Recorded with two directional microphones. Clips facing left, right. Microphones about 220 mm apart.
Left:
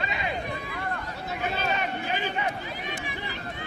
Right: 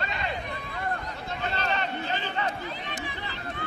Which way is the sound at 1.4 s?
10° left (ahead or behind).